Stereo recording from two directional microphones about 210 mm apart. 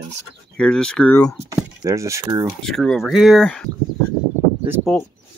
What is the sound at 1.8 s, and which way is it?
Speech, 15° right (ahead or behind).